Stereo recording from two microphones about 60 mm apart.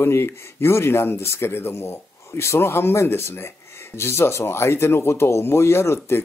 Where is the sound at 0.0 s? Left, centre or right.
Left.